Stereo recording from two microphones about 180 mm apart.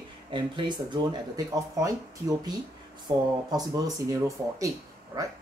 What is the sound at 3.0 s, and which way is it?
Speech, 20° right (ahead or behind).